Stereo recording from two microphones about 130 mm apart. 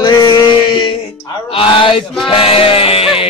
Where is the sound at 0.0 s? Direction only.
35° left (ahead or behind).